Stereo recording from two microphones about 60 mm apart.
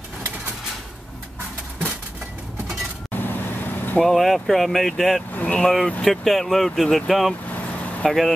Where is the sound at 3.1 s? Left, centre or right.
Left.